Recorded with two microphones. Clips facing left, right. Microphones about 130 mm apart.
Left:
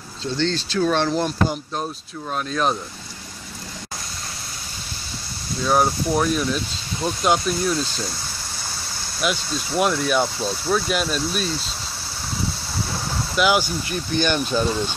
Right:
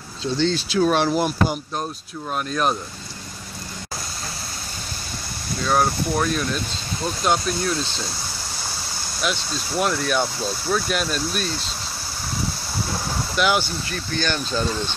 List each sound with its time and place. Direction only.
0.2 s speech: 10° right (ahead or behind)
5.7 s speech: 5° left (ahead or behind)
9.2 s speech: 5° left (ahead or behind)
13.4 s speech: 5° left (ahead or behind)
13.8 s speech: 15° left (ahead or behind)